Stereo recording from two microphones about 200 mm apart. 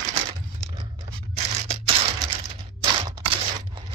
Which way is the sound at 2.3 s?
25° right (ahead or behind).